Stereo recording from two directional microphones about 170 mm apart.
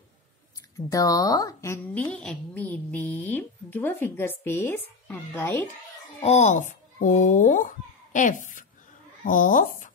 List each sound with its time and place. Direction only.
0.7 s speech: 20° left (ahead or behind)
6.2 s speech: 45° left (ahead or behind)